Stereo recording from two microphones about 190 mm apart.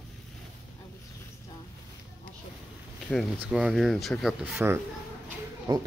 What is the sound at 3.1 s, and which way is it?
Speech, 5° right (ahead or behind).